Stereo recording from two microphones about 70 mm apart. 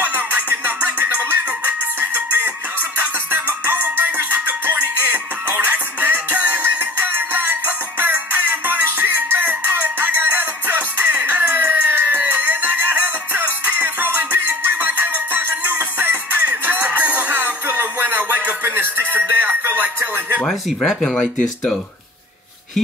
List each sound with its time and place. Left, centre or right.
0.0 s music: right
20.3 s speech: centre